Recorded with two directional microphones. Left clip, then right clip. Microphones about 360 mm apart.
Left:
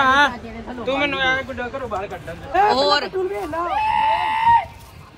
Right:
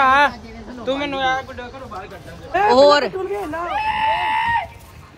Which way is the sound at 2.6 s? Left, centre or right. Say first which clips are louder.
Right 9 dB; centre.